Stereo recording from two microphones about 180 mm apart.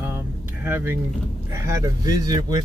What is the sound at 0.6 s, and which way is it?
Speech, 10° right (ahead or behind).